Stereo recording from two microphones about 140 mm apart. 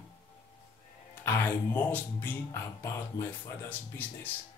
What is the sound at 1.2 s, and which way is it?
Speech, 15° left (ahead or behind).